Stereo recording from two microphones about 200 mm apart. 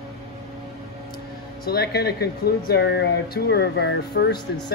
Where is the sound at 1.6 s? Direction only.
50° left (ahead or behind).